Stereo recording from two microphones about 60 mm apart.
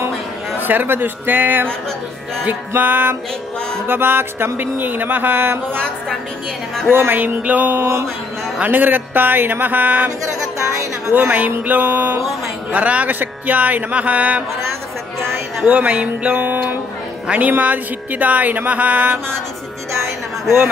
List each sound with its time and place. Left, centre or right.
0.6 s speech: right
6.9 s speech: right
7.8 s music: right
8.6 s speech: right
11.1 s speech: right
15.6 s speech: right